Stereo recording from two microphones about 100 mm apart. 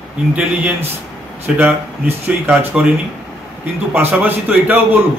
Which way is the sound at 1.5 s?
20° right (ahead or behind).